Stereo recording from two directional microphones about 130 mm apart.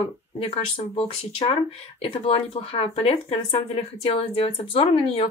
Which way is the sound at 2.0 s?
45° left (ahead or behind).